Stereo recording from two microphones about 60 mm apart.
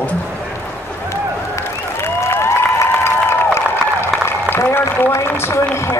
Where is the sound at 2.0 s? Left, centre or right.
Left.